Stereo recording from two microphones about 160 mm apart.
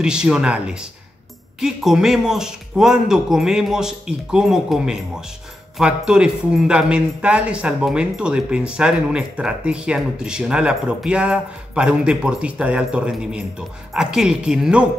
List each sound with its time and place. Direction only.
0.0 s a man's voice: 5° right (ahead or behind)